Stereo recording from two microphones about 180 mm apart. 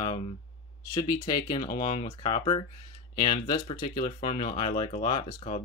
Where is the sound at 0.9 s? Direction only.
20° left (ahead or behind).